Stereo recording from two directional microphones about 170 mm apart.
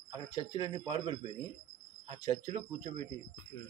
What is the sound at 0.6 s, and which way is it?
Speech, 30° right (ahead or behind).